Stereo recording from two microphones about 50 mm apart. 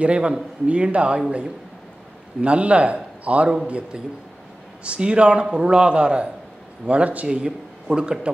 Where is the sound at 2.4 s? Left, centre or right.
Right.